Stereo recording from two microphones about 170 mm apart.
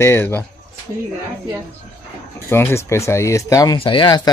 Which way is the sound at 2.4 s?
15° left (ahead or behind).